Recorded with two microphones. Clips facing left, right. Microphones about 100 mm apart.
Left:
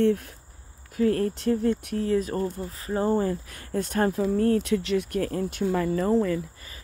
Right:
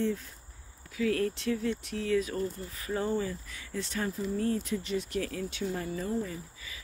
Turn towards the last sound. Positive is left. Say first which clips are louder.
# left 10 dB
turn(degrees=75)  # may be behind; listen again after turning